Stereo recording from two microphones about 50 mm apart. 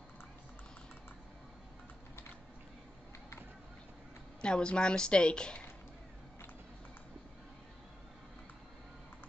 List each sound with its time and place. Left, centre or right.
4.4 s a woman's voice: centre